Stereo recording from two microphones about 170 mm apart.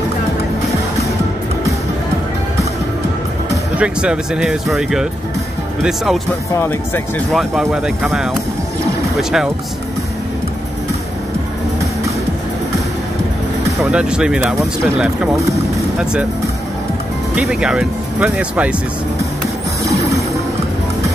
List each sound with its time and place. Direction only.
3.7 s speech: 5° right (ahead or behind)
6.5 s speech: 15° left (ahead or behind)
7.7 s speech: 5° right (ahead or behind)
13.7 s speech: 5° right (ahead or behind)
17.4 s speech: 5° right (ahead or behind)
19.8 s music: 20° right (ahead or behind)